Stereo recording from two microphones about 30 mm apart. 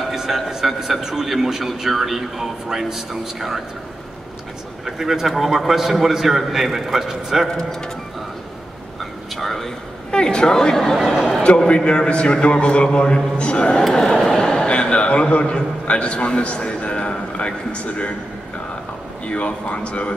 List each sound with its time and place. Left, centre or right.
0.1 s a man's voice: centre
4.8 s a man's voice: centre
7.4 s speech: left
9.4 s a sound: centre
10.1 s speech: left
11.4 s a man's voice: left
12.8 s a man's voice: left
13.8 s a sound: centre
14.7 s a man's voice: left
16.8 s a sound: left
17.7 s a man's voice: left
19.2 s a man's voice: left